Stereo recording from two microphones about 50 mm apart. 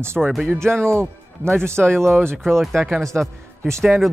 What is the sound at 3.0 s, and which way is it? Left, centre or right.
Speech, centre.